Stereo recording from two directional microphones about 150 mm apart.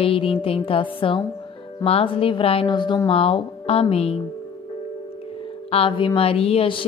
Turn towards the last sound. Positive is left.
turn(degrees=40)  # may be behind; listen again after turning